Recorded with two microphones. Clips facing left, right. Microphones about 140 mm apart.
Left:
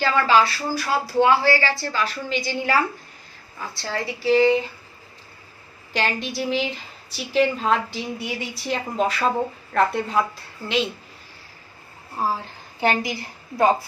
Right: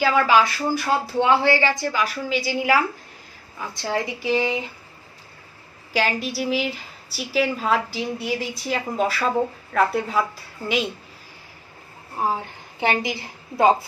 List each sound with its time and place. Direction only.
0.0 s speech: 10° right (ahead or behind)
5.9 s a woman's voice: 5° right (ahead or behind)
12.8 s a woman's voice: 20° right (ahead or behind)